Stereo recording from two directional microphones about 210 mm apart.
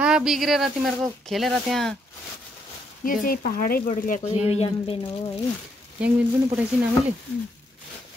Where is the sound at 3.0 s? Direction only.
40° left (ahead or behind); by 5.1 s 25° left (ahead or behind).